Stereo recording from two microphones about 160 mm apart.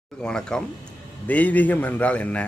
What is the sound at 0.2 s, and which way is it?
A man's voice, 5° left (ahead or behind).